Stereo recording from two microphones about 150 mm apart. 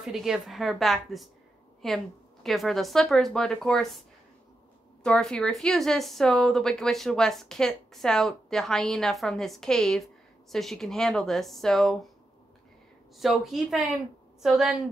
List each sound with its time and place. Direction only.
0.0 s speech: centre (ahead or behind)
5.0 s speech: 5° left (ahead or behind)
13.2 s speech: centre (ahead or behind)